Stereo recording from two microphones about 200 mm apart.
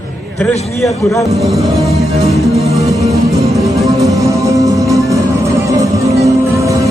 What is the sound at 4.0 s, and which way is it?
Music, 15° right (ahead or behind).